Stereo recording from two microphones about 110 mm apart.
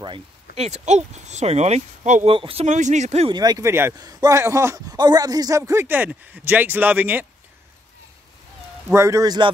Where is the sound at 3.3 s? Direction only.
35° right (ahead or behind).